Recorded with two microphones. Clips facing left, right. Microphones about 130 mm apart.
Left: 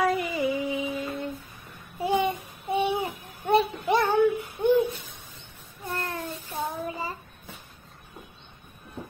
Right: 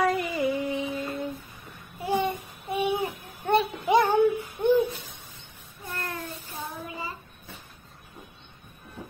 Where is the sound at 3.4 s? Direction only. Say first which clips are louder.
Left 1 dB; centre (ahead or behind).